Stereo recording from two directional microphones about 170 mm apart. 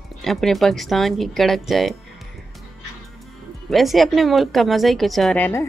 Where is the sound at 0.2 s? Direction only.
Centre (ahead or behind).